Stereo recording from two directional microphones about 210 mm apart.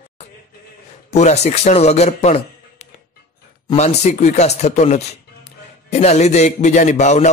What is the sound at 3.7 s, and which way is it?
Speech, 30° left (ahead or behind).